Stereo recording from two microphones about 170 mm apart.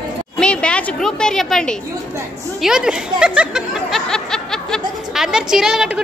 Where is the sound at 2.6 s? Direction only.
5° right (ahead or behind).